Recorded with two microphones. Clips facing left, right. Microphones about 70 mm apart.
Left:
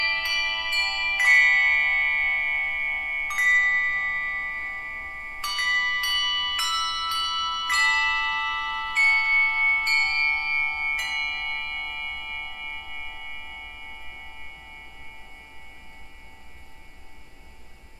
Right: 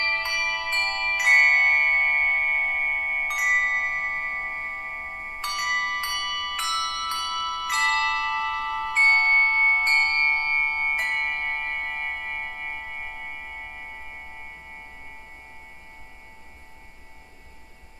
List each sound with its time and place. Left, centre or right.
0.0 s music: right
1.3 s tubular bells: right
3.3 s chime: centre
3.7 s tubular bells: centre
5.5 s bell: right
6.5 s music: centre
7.1 s music: right